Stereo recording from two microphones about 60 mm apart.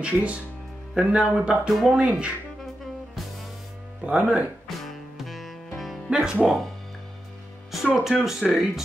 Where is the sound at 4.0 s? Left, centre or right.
Centre.